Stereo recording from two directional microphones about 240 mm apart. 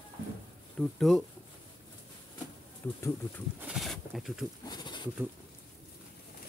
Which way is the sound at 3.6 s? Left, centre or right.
Centre.